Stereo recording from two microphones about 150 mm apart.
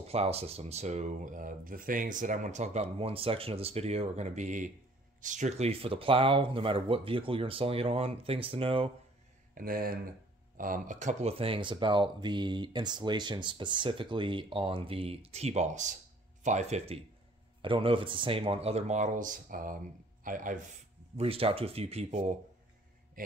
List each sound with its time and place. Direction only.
0.0 s speech: 45° right (ahead or behind)
9.6 s speech: 75° right (ahead or behind)
10.6 s a man's voice: 60° right (ahead or behind)
21.2 s speech: 40° right (ahead or behind)
23.2 s mantra: 70° right (ahead or behind)